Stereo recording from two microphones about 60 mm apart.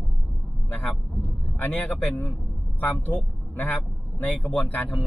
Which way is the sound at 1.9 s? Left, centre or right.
Left.